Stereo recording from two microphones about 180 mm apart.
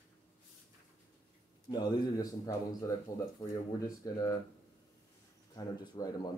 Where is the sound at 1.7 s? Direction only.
20° left (ahead or behind).